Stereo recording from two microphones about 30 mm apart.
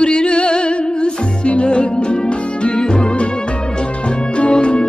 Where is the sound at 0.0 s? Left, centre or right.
Left.